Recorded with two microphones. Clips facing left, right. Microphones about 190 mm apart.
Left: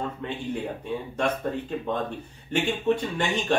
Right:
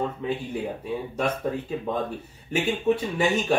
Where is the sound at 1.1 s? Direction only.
10° right (ahead or behind).